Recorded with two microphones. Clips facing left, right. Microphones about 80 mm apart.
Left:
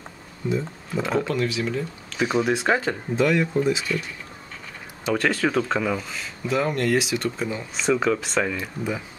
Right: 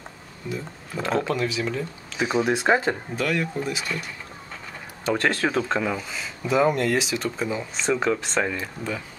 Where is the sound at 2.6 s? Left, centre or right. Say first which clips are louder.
Right 2 dB; centre.